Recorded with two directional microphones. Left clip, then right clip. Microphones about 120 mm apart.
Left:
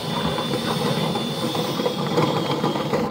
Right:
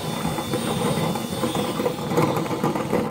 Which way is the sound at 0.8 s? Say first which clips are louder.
Left 1 dB; 20° right (ahead or behind).